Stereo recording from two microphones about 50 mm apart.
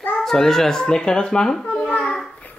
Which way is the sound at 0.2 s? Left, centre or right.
Centre.